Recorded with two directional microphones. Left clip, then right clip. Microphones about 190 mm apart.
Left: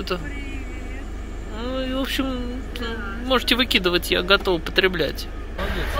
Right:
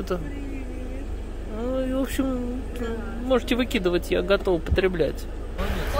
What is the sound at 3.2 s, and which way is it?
Speech, 15° right (ahead or behind).